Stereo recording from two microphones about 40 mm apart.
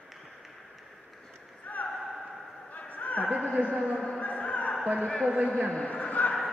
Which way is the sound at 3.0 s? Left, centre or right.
Left.